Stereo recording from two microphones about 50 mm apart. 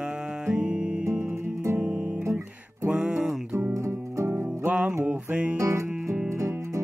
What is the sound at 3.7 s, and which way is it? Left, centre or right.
Music, right.